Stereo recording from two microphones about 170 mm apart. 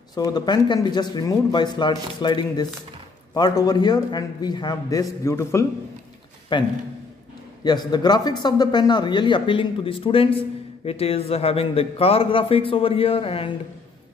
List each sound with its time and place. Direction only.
0.1 s speech: 25° left (ahead or behind)
6.5 s a man's voice: 25° left (ahead or behind)